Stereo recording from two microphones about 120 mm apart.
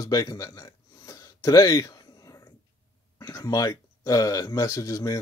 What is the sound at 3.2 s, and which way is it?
Speech, 30° left (ahead or behind).